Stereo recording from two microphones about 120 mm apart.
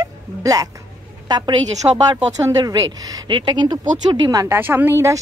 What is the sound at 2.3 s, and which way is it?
Speech, 30° right (ahead or behind).